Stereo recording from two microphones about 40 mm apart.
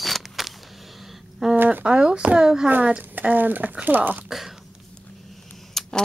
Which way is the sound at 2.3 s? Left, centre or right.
Centre.